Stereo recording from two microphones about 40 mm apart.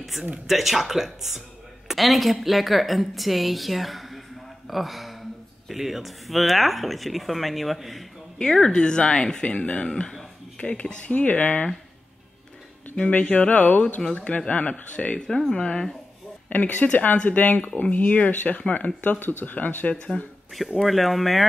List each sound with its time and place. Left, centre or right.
0.5 s a woman's voice: centre
8.4 s speech: centre
10.6 s speech: left
11.1 s speech: left
13.0 s speech: left
15.1 s speech: centre
16.4 s speech: left
18.9 s speech: left
19.4 s speech: left
20.5 s a woman's voice: centre